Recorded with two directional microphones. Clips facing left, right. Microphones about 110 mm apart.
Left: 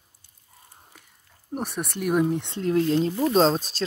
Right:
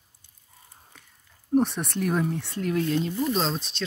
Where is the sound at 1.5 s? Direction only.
Centre (ahead or behind).